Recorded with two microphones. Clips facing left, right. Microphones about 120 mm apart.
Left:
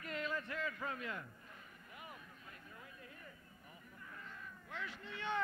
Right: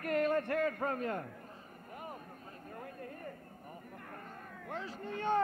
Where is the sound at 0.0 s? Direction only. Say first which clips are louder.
Right 11 dB; 55° right (ahead or behind).